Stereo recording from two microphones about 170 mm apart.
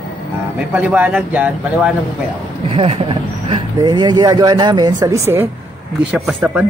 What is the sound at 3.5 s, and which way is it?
A man's voice, 25° right (ahead or behind).